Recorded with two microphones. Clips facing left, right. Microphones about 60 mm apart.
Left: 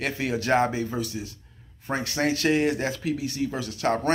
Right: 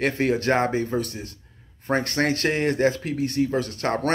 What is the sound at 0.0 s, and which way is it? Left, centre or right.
Speech, right.